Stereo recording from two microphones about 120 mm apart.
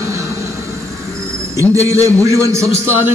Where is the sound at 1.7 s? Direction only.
25° right (ahead or behind).